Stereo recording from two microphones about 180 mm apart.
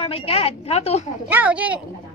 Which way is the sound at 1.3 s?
10° right (ahead or behind).